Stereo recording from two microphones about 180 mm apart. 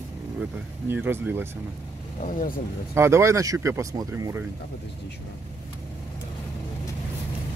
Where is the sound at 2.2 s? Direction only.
50° left (ahead or behind).